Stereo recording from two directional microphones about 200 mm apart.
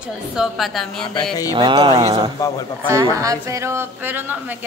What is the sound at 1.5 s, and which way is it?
A woman's voice, 25° right (ahead or behind).